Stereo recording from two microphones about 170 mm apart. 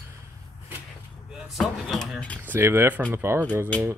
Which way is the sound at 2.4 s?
10° right (ahead or behind).